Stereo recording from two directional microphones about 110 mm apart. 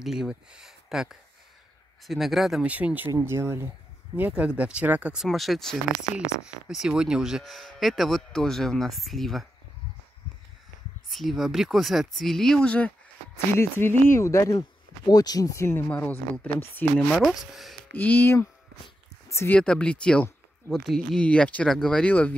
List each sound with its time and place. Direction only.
0.0 s speech: 5° right (ahead or behind)
2.7 s speech: 15° right (ahead or behind)
4.2 s speech: 10° right (ahead or behind)
11.1 s speech: centre (ahead or behind)
13.6 s speech: 20° left (ahead or behind)
17.1 s speech: centre (ahead or behind)
17.9 s speech: 15° left (ahead or behind)
19.2 s a sound: 25° left (ahead or behind)
19.5 s speech: 10° left (ahead or behind)